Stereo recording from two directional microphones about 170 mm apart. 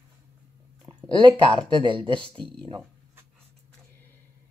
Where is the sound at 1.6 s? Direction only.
30° right (ahead or behind).